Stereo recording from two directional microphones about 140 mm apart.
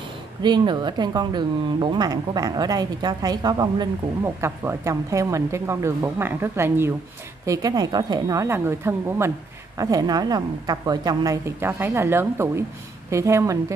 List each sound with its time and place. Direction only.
0.4 s speech: 30° right (ahead or behind)